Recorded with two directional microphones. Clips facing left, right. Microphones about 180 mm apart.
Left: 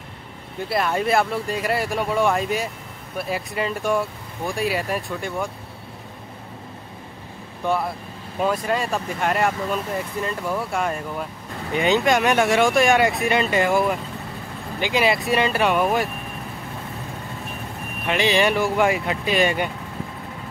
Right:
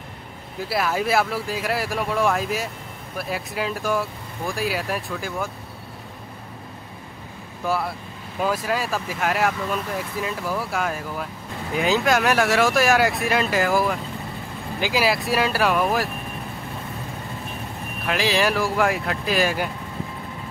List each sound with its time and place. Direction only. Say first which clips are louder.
0.6 s speech: left 1 dB; 5° right (ahead or behind)
7.6 s speech: left 2 dB; 5° right (ahead or behind)
18.0 s speech: left 2 dB; centre (ahead or behind)